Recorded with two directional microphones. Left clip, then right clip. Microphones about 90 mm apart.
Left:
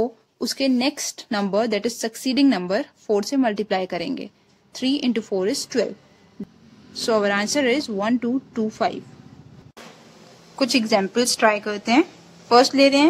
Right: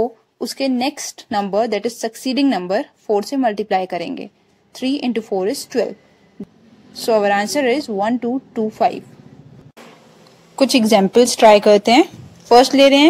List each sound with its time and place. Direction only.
0.6 s a woman's voice: 20° right (ahead or behind)
10.5 s speech: 45° right (ahead or behind)